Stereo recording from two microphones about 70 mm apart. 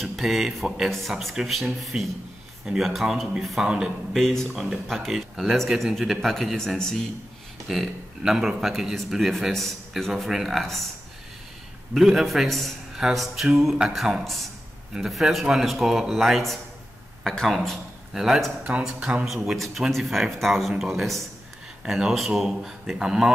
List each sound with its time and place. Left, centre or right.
0.0 s speech: centre
2.9 s speech: centre
7.6 s speech: centre
11.9 s speech: centre
18.1 s speech: centre
18.6 s speech: centre
19.2 s speech: centre